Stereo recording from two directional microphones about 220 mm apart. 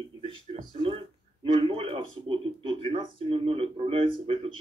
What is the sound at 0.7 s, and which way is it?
Speech, 25° right (ahead or behind).